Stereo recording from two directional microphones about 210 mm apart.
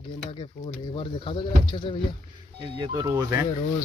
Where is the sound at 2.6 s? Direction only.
20° right (ahead or behind).